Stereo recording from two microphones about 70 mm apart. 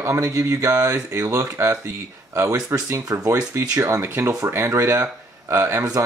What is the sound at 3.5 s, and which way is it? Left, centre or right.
A man's voice, right.